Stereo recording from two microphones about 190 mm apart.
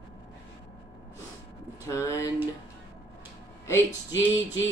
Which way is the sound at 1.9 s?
15° left (ahead or behind).